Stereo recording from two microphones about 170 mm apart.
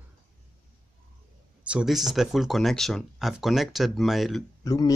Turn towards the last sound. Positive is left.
turn(degrees=20)  # may be behind; listen again after turning